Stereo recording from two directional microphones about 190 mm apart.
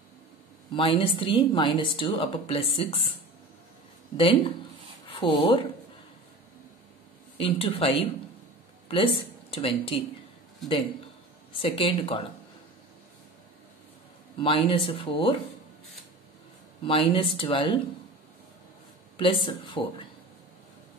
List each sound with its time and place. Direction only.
0.7 s a woman's voice: 30° left (ahead or behind)
4.2 s speech: 30° left (ahead or behind)
7.3 s a woman's voice: 30° left (ahead or behind)
11.6 s a woman's voice: 30° left (ahead or behind)
14.4 s a woman's voice: 30° left (ahead or behind)
16.8 s a woman's voice: 25° left (ahead or behind)
19.1 s a woman's voice: 25° left (ahead or behind)